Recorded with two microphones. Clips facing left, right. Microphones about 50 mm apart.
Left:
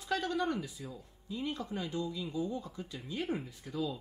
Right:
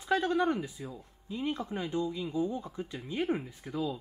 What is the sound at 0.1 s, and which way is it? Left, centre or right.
Speech, right.